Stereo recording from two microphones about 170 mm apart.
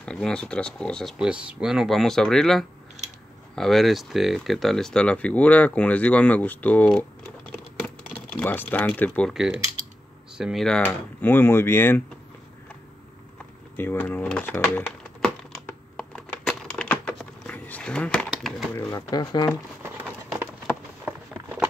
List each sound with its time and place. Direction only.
0.0 s speech: 5° left (ahead or behind)
7.8 s typing: 10° left (ahead or behind)
9.3 s speech: centre (ahead or behind)
13.7 s crumpling: 10° left (ahead or behind)
18.3 s bird: 5° right (ahead or behind)
18.7 s speech: 15° left (ahead or behind)
19.8 s a sound: 15° right (ahead or behind)